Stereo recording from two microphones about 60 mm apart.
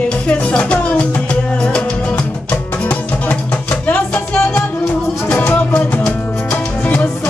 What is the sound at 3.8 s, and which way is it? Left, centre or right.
Music, left.